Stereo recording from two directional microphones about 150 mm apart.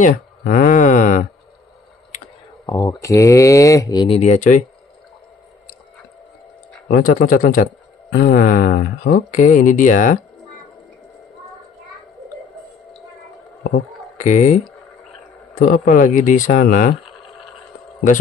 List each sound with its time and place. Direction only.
0.0 s speech: 65° left (ahead or behind)
2.6 s speech: 20° left (ahead or behind)
4.1 s speech: 45° left (ahead or behind)
6.9 s speech: 70° left (ahead or behind)
14.1 s speech: 55° left (ahead or behind)
15.6 s speech: 65° left (ahead or behind)